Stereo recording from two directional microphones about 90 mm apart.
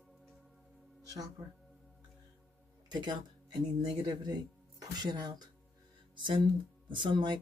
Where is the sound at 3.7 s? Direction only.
50° right (ahead or behind).